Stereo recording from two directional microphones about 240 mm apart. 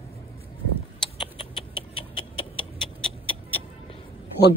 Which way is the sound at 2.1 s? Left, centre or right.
Left.